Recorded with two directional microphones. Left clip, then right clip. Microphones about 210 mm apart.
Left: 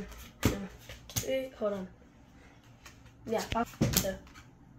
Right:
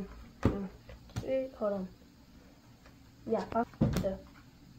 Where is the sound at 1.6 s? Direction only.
5° left (ahead or behind).